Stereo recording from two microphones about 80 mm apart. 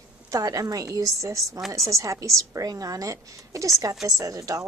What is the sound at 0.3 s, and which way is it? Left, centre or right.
A woman's voice, right.